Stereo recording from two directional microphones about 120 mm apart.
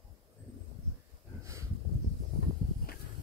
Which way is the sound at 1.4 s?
25° right (ahead or behind).